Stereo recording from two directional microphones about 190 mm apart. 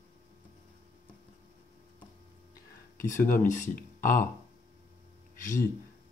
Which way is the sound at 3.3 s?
40° left (ahead or behind).